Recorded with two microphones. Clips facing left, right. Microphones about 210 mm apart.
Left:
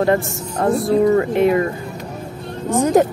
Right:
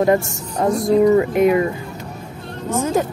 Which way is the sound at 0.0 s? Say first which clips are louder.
Right 1 dB; 20° right (ahead or behind).